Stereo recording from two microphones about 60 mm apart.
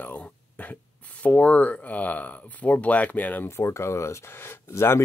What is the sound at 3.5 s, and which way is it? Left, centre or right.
Speech, left.